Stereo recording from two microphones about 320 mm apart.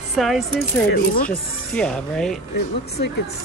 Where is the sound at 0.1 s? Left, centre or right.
Centre.